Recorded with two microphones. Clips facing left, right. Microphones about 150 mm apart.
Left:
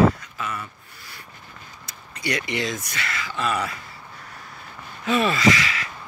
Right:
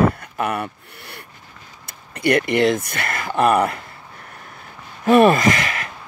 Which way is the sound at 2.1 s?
55° right (ahead or behind).